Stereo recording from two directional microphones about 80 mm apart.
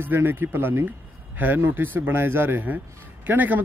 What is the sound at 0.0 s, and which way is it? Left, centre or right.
A man's voice, right.